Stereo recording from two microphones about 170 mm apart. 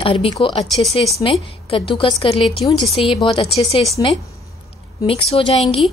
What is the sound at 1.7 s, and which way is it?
A woman's voice, 30° left (ahead or behind).